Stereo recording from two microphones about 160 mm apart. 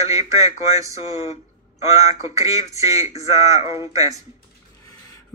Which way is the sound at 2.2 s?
20° right (ahead or behind).